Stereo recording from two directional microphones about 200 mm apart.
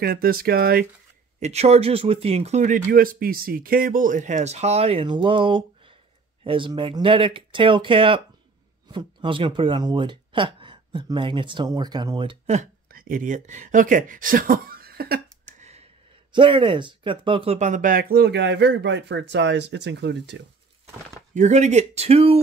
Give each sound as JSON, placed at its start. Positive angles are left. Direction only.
{"t": 0.0, "sound": "speech", "side_deg": -50}
{"t": 1.4, "sound": "speech", "side_deg": -30}
{"t": 12.9, "sound": "speech", "side_deg": -45}
{"t": 16.3, "sound": "speech", "side_deg": -25}
{"t": 21.4, "sound": "speech", "side_deg": -35}